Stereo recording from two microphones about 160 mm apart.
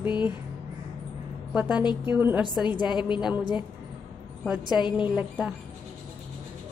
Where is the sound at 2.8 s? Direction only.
30° left (ahead or behind).